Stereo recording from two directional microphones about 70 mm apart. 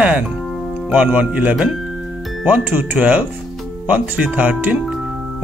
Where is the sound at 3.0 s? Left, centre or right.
Centre.